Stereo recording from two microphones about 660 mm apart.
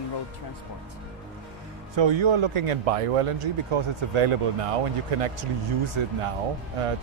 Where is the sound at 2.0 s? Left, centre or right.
Right.